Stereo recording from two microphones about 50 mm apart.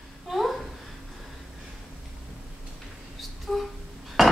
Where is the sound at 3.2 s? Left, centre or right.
Centre.